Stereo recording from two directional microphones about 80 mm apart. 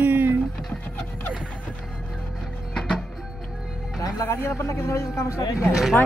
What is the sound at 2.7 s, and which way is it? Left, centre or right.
Music, centre.